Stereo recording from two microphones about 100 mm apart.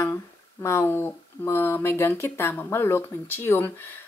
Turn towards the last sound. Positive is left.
turn(degrees=25)  # may be behind; listen again after turning